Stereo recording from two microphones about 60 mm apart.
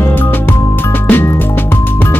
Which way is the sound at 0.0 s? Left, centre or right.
Left.